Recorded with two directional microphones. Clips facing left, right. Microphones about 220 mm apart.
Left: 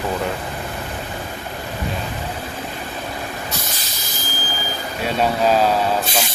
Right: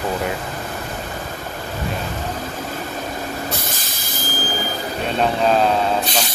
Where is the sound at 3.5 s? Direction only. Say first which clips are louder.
Right 2 dB; 50° right (ahead or behind).